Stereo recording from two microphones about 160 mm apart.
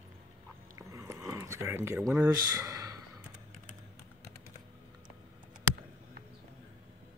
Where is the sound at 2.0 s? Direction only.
5° right (ahead or behind).